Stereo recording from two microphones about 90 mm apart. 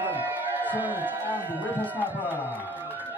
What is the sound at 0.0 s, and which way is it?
Speech, 20° right (ahead or behind).